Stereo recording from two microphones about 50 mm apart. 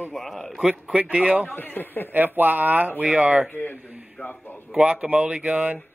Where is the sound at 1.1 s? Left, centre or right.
Right.